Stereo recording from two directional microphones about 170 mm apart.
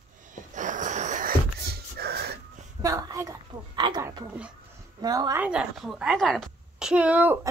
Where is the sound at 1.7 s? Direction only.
65° right (ahead or behind).